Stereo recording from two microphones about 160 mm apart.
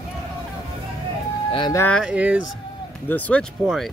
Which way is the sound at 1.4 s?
30° left (ahead or behind).